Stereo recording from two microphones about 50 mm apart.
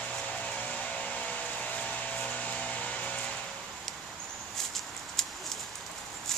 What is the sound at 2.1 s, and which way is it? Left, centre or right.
Hair dryer, left.